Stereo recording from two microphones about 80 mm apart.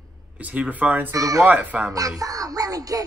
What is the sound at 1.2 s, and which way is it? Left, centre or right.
Speech, right.